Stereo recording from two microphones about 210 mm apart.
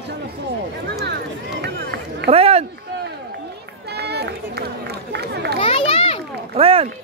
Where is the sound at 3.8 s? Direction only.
50° right (ahead or behind).